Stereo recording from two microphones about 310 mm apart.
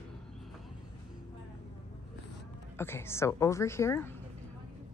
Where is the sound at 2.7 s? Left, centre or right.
Centre.